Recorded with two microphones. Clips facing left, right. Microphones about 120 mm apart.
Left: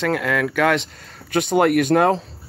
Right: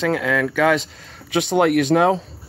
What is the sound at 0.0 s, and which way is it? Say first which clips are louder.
Speech: right 1 dB; centre (ahead or behind).